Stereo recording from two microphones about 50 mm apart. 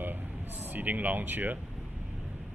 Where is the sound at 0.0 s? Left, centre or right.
Right.